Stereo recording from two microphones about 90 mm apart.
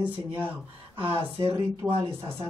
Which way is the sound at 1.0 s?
80° right.